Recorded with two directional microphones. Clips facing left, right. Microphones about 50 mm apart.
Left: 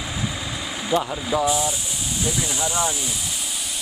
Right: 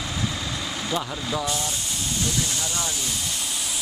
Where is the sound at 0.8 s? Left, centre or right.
Centre.